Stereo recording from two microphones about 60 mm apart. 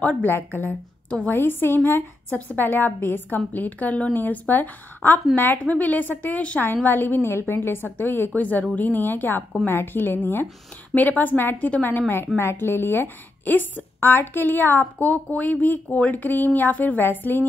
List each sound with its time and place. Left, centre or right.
0.0 s speech: left
2.3 s a woman's voice: left